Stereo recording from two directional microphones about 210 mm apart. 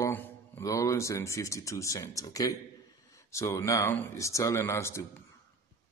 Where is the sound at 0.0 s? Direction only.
10° left (ahead or behind).